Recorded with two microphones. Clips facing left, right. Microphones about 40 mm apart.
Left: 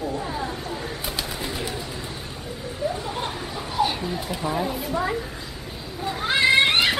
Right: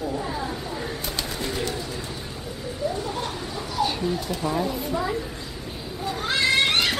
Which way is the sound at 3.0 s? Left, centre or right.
Left.